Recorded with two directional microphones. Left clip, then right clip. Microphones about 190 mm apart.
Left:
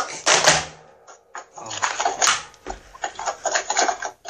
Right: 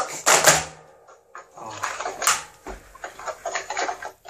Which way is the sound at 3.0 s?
35° left (ahead or behind).